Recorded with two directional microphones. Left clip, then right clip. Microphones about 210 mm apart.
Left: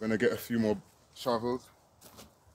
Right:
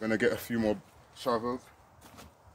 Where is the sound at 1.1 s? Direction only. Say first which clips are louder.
Right 1 dB; 30° left (ahead or behind).